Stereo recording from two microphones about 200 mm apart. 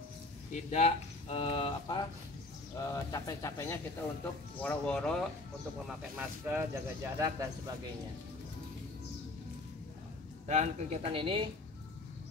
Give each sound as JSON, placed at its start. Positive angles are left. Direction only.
{"t": 0.5, "sound": "speech", "side_deg": 35}
{"t": 2.8, "sound": "speech", "side_deg": 15}
{"t": 5.9, "sound": "speech", "side_deg": -10}
{"t": 10.4, "sound": "speech", "side_deg": -35}